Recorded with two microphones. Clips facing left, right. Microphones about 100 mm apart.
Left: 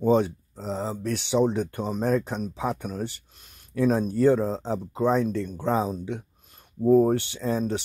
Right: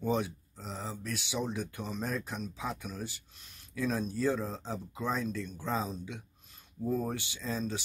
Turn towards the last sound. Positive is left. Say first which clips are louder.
# left 9 dB
turn(degrees=65)  # may be behind; listen again after turning